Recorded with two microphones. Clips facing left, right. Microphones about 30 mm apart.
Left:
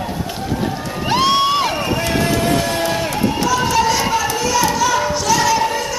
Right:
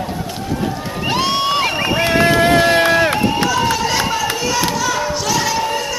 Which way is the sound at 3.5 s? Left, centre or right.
Centre.